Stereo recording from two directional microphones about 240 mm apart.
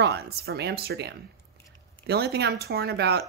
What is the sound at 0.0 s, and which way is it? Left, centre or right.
A child's voice, right.